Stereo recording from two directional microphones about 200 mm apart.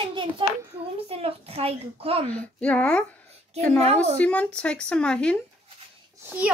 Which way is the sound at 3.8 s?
30° right (ahead or behind).